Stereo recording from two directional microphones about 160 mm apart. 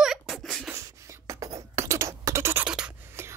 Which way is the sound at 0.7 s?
15° right (ahead or behind).